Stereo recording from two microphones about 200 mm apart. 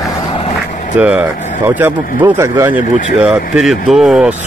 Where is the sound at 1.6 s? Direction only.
15° right (ahead or behind).